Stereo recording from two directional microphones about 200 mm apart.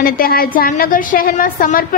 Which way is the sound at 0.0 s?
50° left (ahead or behind).